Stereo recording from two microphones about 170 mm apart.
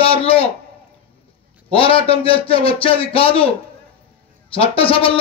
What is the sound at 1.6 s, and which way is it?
Speech, 30° left (ahead or behind).